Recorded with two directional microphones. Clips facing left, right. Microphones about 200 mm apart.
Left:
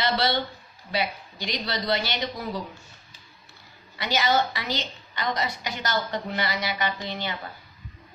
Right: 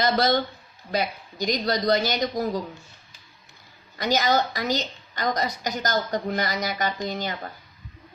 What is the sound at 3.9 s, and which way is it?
A woman's voice, 45° right (ahead or behind).